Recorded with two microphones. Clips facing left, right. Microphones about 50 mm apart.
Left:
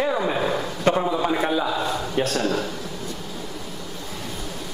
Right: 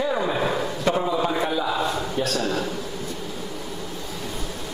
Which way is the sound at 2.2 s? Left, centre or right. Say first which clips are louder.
Left 3 dB; left.